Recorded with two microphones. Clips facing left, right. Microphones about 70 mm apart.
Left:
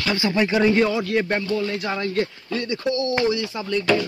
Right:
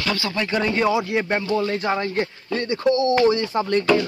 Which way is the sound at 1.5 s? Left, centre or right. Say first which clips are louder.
Right 3 dB; right.